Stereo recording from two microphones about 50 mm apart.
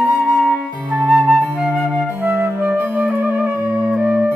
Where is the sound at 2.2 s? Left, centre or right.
Right.